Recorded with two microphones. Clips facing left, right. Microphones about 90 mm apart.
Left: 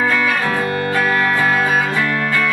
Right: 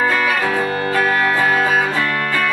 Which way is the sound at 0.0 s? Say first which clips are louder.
Even; 10° right (ahead or behind).